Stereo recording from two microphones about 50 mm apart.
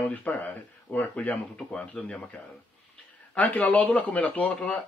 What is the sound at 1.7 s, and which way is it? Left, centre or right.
Speech, centre.